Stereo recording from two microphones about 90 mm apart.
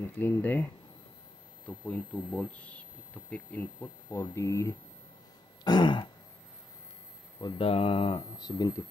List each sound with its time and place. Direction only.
0.0 s speech: 25° left (ahead or behind)
1.9 s speech: 15° left (ahead or behind)
4.1 s speech: 30° left (ahead or behind)
5.6 s throat clearing: 55° left (ahead or behind)
7.5 s speech: 90° left
8.4 s speech: 50° left (ahead or behind)